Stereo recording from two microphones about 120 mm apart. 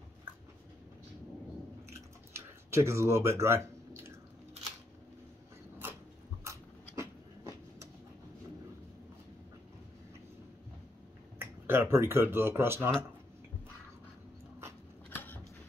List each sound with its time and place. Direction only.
1.9 s drip: 20° right (ahead or behind)
6.4 s dog: 25° right (ahead or behind)
11.3 s speech: 20° right (ahead or behind)
15.0 s a sound: 15° left (ahead or behind)